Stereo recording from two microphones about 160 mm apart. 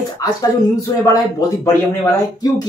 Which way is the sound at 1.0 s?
20° left (ahead or behind).